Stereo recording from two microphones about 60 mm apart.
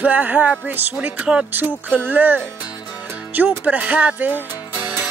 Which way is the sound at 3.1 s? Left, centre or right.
Right.